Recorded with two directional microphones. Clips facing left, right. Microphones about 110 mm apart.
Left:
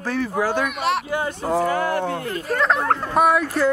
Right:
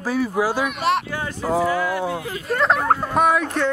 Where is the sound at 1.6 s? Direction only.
50° left (ahead or behind).